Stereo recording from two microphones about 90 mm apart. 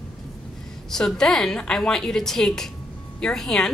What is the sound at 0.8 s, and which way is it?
A woman's voice, 5° left (ahead or behind).